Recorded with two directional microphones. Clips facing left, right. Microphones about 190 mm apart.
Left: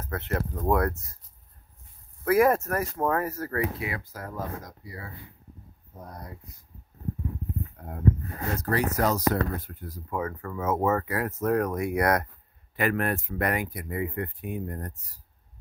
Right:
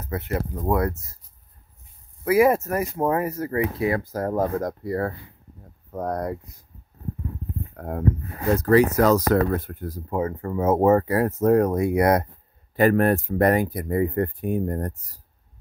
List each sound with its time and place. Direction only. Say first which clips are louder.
0.0 s speech: right 3 dB; 10° right (ahead or behind)
2.2 s speech: right 3 dB; 5° right (ahead or behind)
3.8 s speech: right 11 dB; 40° right (ahead or behind); by 5.1 s 60° right (ahead or behind)
5.9 s speech: right 16 dB; 90° right
7.7 s a sound: right 10 dB; 90° right
8.5 s speech: right 9 dB; 90° right
9.3 s speech: right 8 dB; 60° right (ahead or behind)
10.0 s speech: right 6 dB; 25° right (ahead or behind); by 15.1 s 40° right (ahead or behind)